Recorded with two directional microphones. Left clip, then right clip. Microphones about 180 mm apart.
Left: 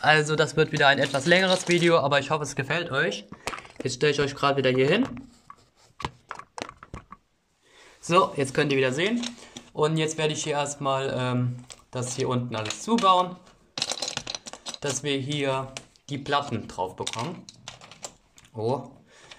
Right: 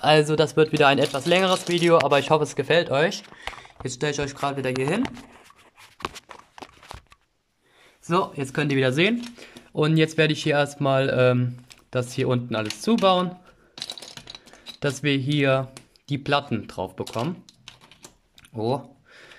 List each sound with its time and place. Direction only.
0.0 s speech: 10° right (ahead or behind)
2.4 s speech: centre (ahead or behind)
2.7 s speech: 25° right (ahead or behind)
8.1 s speech: 50° right (ahead or behind); by 13.3 s 70° right (ahead or behind)
13.7 s typing: 10° left (ahead or behind)
14.8 s speech: 70° right (ahead or behind)
18.5 s a sound: 65° right (ahead or behind)